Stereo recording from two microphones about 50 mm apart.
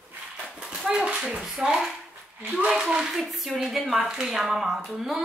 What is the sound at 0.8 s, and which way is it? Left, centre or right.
A woman's voice, centre.